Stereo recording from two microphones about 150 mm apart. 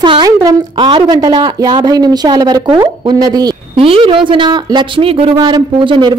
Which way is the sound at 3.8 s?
35° right (ahead or behind).